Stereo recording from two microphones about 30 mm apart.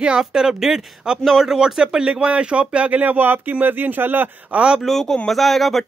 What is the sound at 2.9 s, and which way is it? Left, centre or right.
Speech, right.